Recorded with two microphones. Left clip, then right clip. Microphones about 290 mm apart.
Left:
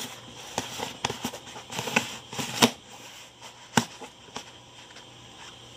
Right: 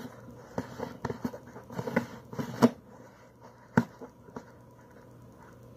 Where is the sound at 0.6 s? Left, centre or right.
Left.